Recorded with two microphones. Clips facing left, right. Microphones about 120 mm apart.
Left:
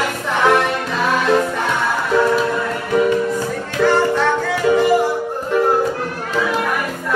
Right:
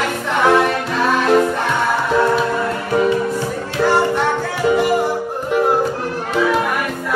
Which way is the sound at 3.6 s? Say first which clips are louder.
Left 1 dB; 10° right (ahead or behind).